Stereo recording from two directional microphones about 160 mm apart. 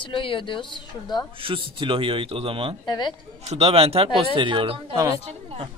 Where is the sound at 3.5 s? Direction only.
40° right (ahead or behind).